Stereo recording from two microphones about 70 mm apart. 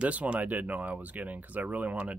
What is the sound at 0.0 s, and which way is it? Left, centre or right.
Speech, centre.